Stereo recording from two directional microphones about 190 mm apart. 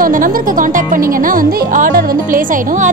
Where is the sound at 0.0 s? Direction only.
45° right (ahead or behind).